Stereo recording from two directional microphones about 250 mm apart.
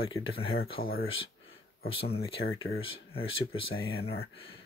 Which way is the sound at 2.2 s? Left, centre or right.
Left.